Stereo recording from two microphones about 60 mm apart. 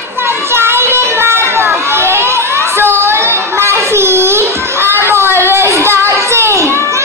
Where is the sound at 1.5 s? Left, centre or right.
Right.